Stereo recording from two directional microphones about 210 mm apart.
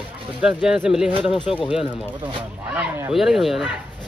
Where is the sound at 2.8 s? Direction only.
5° right (ahead or behind).